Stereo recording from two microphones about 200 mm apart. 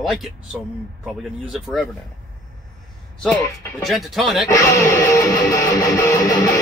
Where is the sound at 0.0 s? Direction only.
Centre (ahead or behind).